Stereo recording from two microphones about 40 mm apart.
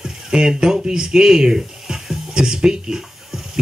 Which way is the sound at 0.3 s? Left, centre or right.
Centre.